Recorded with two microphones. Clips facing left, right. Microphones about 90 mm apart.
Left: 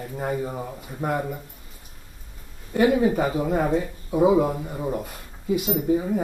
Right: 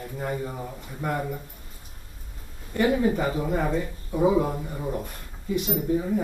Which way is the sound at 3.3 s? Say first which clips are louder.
Left 3 dB; 45° left (ahead or behind).